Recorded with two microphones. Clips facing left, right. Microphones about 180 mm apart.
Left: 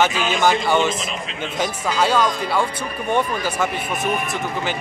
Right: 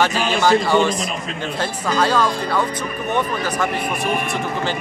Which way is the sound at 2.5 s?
30° left (ahead or behind).